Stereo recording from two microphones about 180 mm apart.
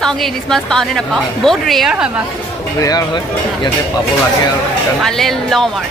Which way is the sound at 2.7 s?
20° left (ahead or behind).